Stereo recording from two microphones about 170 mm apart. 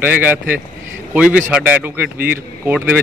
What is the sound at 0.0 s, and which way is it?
A man's voice, 10° right (ahead or behind).